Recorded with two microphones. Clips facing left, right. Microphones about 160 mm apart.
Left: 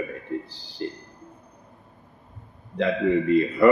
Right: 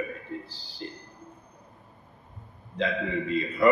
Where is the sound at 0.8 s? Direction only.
70° left (ahead or behind).